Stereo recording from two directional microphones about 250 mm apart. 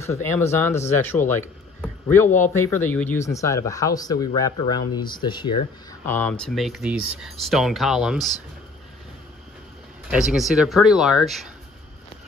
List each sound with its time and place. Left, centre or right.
0.0 s a man's voice: centre
6.0 s speech: centre
10.0 s speech: centre